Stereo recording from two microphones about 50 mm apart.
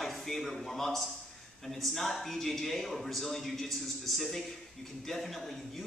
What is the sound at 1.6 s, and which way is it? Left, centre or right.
A man's voice, centre.